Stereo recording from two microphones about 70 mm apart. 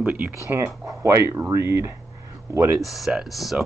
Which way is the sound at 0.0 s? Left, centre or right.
Right.